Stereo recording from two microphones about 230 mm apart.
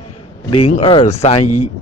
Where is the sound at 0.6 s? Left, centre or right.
Left.